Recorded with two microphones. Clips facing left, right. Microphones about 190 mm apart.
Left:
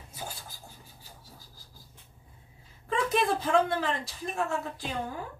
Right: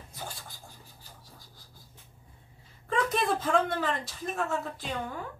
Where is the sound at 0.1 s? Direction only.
10° left (ahead or behind).